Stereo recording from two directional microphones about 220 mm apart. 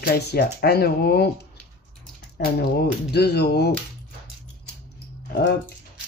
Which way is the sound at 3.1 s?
45° left (ahead or behind).